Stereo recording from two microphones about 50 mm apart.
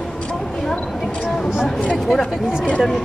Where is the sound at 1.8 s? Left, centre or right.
Centre.